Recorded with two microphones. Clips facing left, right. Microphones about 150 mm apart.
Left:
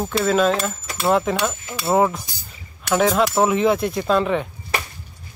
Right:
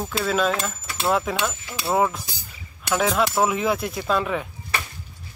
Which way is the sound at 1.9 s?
5° left (ahead or behind).